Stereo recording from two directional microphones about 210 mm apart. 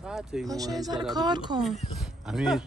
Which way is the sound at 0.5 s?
15° right (ahead or behind).